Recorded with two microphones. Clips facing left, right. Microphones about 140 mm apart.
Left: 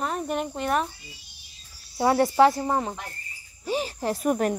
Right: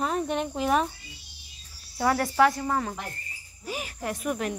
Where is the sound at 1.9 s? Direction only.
25° left (ahead or behind).